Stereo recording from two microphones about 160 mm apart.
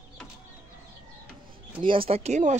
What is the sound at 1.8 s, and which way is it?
Speech, 35° right (ahead or behind).